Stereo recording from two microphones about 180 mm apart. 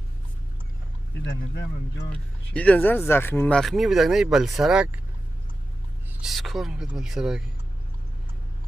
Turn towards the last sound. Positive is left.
turn(degrees=-5)  # may be behind; listen again after turning